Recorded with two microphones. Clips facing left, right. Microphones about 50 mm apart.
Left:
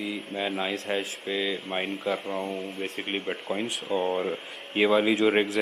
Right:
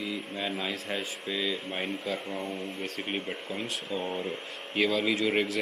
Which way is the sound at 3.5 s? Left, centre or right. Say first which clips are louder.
Left 6 dB; left.